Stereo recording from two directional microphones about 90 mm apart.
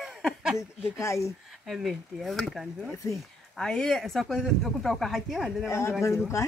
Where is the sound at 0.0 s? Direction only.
5° right (ahead or behind).